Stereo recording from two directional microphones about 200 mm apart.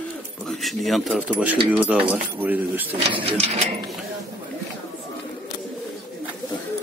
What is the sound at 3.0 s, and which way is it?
Speech, 30° right (ahead or behind).